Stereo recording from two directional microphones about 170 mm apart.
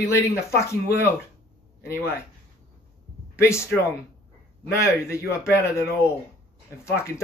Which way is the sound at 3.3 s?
15° left (ahead or behind).